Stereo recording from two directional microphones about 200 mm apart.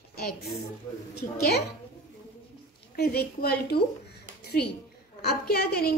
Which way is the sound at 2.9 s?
50° left (ahead or behind).